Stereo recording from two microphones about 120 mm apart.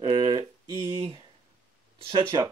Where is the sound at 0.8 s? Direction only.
45° right (ahead or behind).